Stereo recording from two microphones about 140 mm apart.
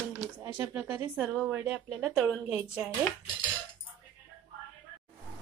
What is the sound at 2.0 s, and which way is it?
Speech, centre (ahead or behind).